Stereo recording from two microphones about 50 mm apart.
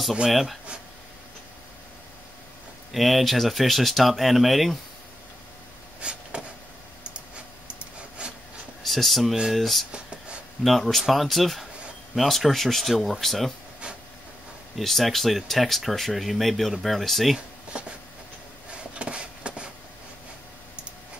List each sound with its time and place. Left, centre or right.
0.3 s speech: centre
2.9 s speech: centre
5.9 s a sound: right
8.2 s wood: right
8.8 s speech: centre
9.9 s a sound: right
10.8 s speech: centre
14.8 s speech: centre
18.7 s a sound: right